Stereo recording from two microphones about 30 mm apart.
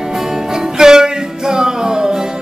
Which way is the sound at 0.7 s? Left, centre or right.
Right.